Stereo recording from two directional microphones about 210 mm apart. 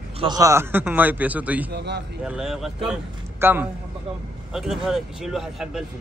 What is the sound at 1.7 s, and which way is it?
Speech, 55° right (ahead or behind).